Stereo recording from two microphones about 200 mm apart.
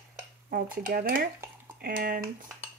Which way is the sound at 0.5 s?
45° right (ahead or behind).